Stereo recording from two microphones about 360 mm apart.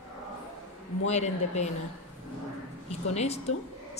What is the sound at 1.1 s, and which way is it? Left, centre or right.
Speech, centre.